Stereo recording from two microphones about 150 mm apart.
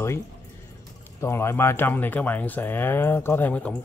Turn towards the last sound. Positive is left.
turn(degrees=10)  # may be behind; listen again after turning